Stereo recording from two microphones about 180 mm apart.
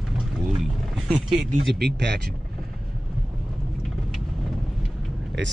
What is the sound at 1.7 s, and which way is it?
Speech, 70° right (ahead or behind).